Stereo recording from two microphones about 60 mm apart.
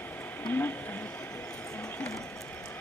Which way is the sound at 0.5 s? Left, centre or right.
Left.